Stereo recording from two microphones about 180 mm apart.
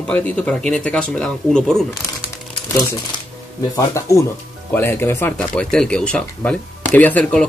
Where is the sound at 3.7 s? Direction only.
15° left (ahead or behind).